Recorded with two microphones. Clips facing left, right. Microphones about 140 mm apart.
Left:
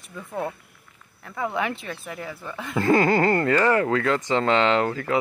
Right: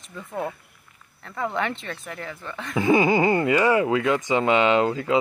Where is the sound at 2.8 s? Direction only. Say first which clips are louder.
Even; 15° right (ahead or behind).